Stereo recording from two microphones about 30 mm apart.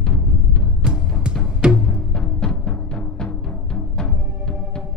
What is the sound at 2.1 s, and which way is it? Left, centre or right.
Timpani, left.